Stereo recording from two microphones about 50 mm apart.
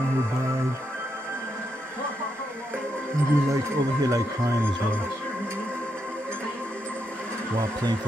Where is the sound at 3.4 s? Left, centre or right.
Right.